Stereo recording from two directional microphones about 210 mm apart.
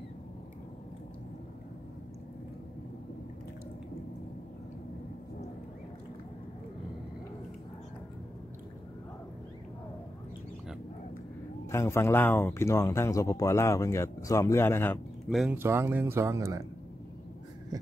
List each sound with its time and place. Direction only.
11.7 s speech: 15° left (ahead or behind)
15.2 s speech: 5° right (ahead or behind)